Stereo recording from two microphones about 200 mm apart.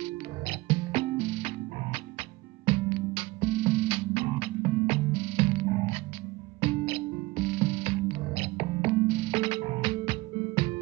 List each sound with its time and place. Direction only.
0.0 s music: 25° right (ahead or behind)